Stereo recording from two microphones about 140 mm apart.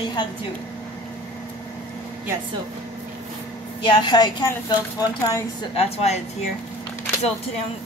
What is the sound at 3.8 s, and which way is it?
A woman's voice, 35° left (ahead or behind).